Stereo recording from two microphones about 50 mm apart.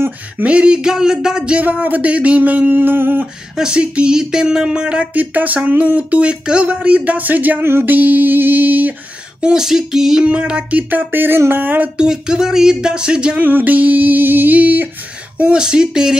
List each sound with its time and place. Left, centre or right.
0.4 s a sound: right
1.6 s speech: right
3.5 s speech: centre
5.1 s speech: right
6.4 s a sound: right
7.6 s speech: right
9.4 s speech: centre
10.2 s speech: right
12.0 s speech: centre
13.4 s speech: right
15.5 s speech: centre